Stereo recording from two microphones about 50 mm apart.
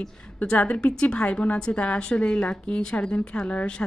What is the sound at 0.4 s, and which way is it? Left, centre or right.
A woman's voice, left.